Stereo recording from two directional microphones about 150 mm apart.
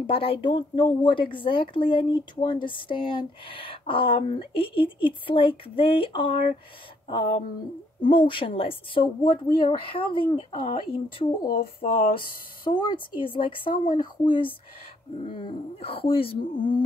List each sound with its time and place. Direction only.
0.0 s speech: 40° left (ahead or behind)